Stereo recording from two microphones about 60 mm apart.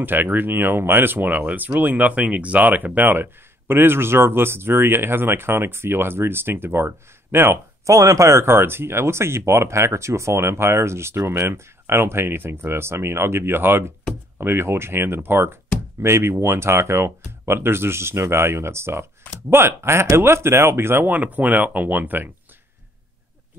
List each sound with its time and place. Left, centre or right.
0.0 s speech: right
7.8 s speech: right